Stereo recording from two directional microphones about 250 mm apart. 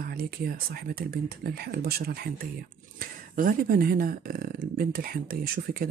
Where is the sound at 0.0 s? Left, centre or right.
Right.